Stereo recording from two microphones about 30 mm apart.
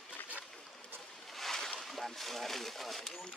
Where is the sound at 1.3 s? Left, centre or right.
Centre.